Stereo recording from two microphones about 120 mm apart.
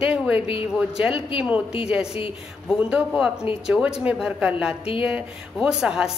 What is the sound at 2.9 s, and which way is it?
A woman's voice, 5° right (ahead or behind).